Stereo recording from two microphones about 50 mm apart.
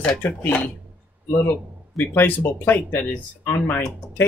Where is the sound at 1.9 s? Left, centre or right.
Left.